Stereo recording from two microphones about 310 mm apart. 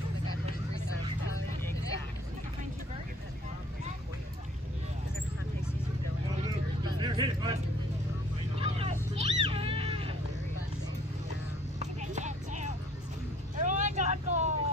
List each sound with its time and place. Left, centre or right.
7.0 s vehicle: centre
8.5 s vehicle: centre
9.2 s music: centre
11.8 s clip-clop: right
13.6 s vehicle: right